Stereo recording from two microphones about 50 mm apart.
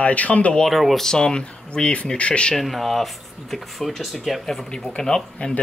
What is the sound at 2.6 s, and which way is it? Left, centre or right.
Speech, centre.